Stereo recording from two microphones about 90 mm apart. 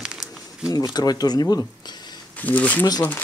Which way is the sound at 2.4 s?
15° left (ahead or behind).